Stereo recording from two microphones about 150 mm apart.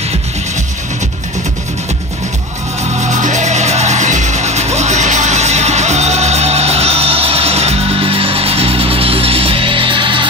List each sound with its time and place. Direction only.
3.0 s music: 55° right (ahead or behind); by 10.2 s 35° right (ahead or behind)